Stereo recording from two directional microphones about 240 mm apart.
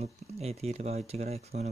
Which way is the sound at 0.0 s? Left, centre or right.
Right.